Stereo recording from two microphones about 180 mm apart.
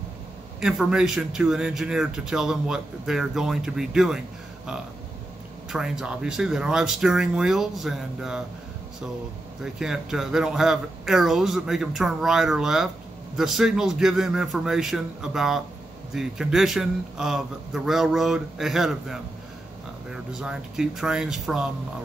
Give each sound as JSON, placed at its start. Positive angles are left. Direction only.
{"t": 0.6, "sound": "speech", "side_deg": -5}
{"t": 5.7, "sound": "speech", "side_deg": -5}
{"t": 9.6, "sound": "speech", "side_deg": -5}